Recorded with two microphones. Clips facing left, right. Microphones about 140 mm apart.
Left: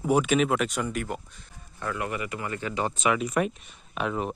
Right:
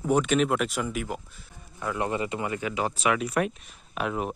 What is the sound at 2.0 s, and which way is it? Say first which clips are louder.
Speech: right 6 dB; 30° right (ahead or behind).